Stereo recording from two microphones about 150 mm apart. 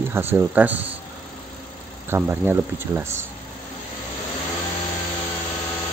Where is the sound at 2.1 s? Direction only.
15° right (ahead or behind).